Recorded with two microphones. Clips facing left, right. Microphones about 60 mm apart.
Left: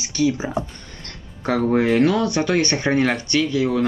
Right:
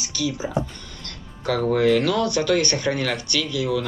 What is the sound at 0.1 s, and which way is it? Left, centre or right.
Speech, left.